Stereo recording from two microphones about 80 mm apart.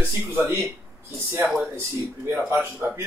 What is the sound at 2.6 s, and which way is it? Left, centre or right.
Speech, centre.